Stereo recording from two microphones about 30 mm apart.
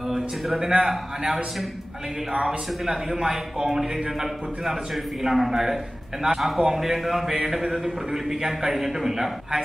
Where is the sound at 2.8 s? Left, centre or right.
Centre.